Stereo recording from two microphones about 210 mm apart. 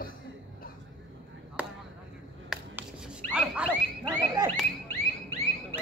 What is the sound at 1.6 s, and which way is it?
Chop, 10° right (ahead or behind).